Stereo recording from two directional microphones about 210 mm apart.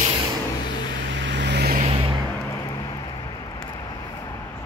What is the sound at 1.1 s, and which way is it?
Vehicle, 60° right (ahead or behind).